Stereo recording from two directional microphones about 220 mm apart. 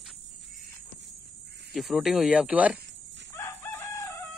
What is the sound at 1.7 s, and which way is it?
Speech, centre (ahead or behind).